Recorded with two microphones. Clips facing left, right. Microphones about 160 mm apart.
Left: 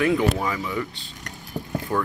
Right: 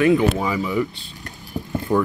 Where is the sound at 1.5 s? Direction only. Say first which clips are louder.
Right 3 dB; 15° left (ahead or behind).